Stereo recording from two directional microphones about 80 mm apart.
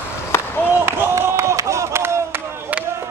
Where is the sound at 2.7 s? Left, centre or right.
Centre.